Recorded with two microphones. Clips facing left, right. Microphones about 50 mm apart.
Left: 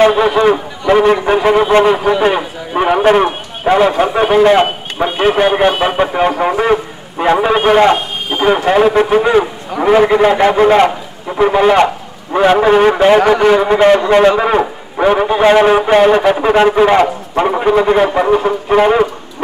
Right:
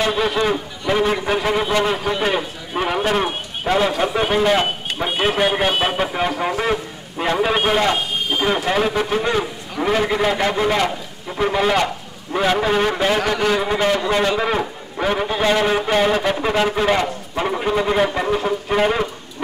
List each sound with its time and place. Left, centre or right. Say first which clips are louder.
0.1 s a man's voice: left 8 dB; centre
1.9 s a man's voice: left 9 dB; centre
8.3 s a man's voice: left 9 dB; centre
11.2 s a man's voice: left 8 dB; centre
14.4 s a man's voice: left 8 dB; left